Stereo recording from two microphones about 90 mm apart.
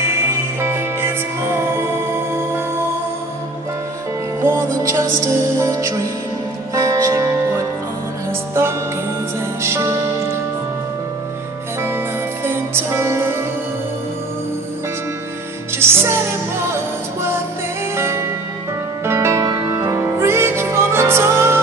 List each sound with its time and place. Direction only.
0.2 s music: 25° right (ahead or behind)
4.4 s music: 30° right (ahead or behind)
12.4 s music: 25° right (ahead or behind)
15.8 s music: 30° right (ahead or behind)
17.9 s music: 30° right (ahead or behind)